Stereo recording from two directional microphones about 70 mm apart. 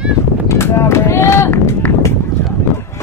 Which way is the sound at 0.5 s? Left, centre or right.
Left.